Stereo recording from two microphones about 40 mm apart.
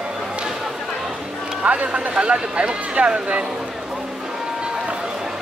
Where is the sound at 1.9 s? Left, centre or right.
Right.